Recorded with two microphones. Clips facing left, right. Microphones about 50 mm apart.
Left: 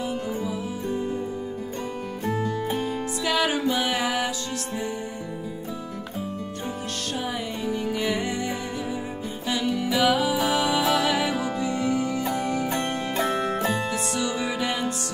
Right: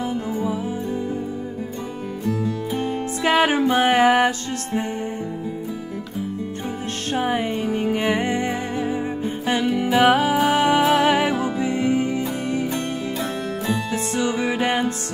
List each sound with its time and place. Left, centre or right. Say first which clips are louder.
2.8 s music: right 4 dB; right
7.2 s music: right 10 dB; right
12.6 s music: right 1 dB; left
13.9 s music: right 4 dB; right